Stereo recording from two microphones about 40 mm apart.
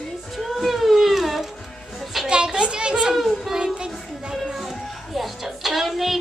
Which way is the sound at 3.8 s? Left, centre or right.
Centre.